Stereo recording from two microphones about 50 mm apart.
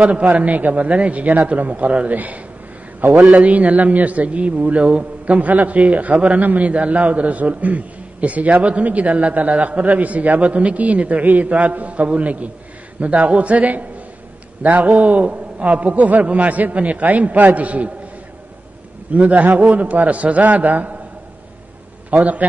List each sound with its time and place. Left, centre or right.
0.0 s a man's voice: right
19.1 s a man's voice: right
22.1 s a man's voice: right